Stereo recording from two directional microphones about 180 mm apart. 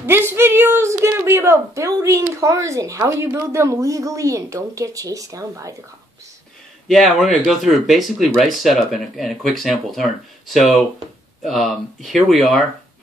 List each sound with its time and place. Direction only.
0.0 s a woman's voice: 15° right (ahead or behind)
6.9 s speech: centre (ahead or behind)